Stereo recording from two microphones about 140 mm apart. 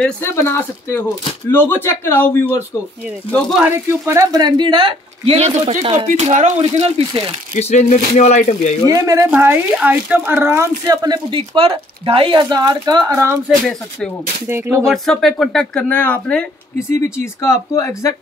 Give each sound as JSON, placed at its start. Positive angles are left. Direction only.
{"t": 0.2, "sound": "a man's voice", "side_deg": 20}
{"t": 3.5, "sound": "speech", "side_deg": -15}
{"t": 6.0, "sound": "speech", "side_deg": -60}
{"t": 7.5, "sound": "speech", "side_deg": 55}
{"t": 8.8, "sound": "speech", "side_deg": -25}
{"t": 9.3, "sound": "speech", "side_deg": -10}
{"t": 13.7, "sound": "speech", "side_deg": 5}
{"t": 14.5, "sound": "speech", "side_deg": -20}
{"t": 14.9, "sound": "speech", "side_deg": 0}
{"t": 16.7, "sound": "speech", "side_deg": 20}